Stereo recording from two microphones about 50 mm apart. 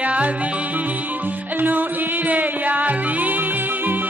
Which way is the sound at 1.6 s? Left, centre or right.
Right.